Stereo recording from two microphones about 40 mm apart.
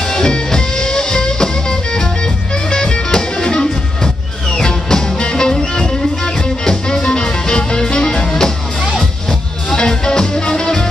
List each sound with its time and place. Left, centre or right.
0.0 s music: centre